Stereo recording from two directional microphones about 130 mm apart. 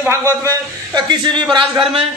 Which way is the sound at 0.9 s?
35° right (ahead or behind).